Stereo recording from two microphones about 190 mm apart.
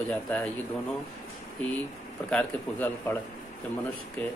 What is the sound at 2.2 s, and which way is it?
Speech, 10° left (ahead or behind).